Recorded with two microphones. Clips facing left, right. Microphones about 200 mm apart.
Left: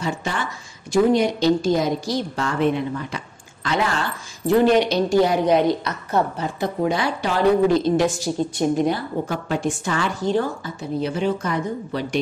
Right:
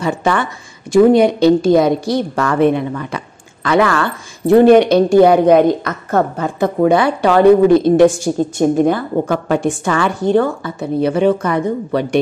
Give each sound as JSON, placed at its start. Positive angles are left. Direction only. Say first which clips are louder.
{"t": 0.0, "sound": "speech", "louder": "right 9 dB", "side_deg": -60}
{"t": 9.2, "sound": "a woman's voice", "louder": "right 8 dB", "side_deg": -80}
{"t": 9.8, "sound": "speech", "louder": "right 8 dB", "side_deg": -60}